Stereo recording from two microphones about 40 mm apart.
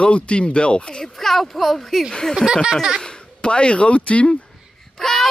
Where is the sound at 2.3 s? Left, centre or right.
Centre.